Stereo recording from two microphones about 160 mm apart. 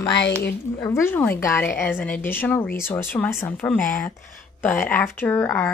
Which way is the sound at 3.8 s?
55° left (ahead or behind).